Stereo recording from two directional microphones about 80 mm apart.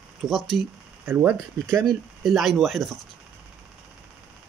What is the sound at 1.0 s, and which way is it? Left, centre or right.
Speech, right.